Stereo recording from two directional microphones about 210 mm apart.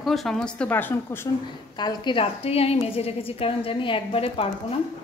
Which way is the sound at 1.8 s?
20° left (ahead or behind).